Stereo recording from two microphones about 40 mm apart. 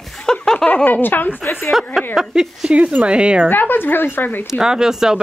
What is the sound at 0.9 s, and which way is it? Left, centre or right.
Speech, left.